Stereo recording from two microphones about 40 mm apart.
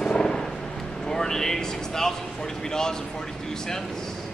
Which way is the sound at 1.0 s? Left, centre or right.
Centre.